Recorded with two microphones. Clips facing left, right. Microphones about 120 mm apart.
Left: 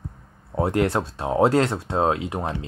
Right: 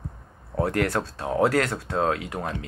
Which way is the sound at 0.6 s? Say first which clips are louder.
Left 3 dB; 20° left (ahead or behind).